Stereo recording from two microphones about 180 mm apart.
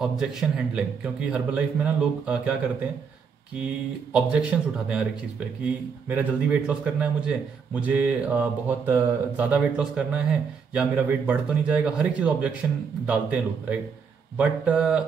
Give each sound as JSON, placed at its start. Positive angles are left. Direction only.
{"t": 0.0, "sound": "a man's voice", "side_deg": -5}
{"t": 4.1, "sound": "a man's voice", "side_deg": -5}